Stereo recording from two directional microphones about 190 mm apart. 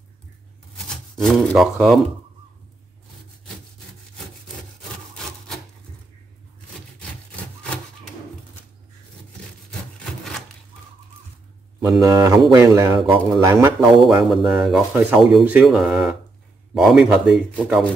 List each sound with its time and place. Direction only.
0.8 s speech: centre (ahead or behind)
12.0 s speech: 15° right (ahead or behind)
14.0 s speech: centre (ahead or behind)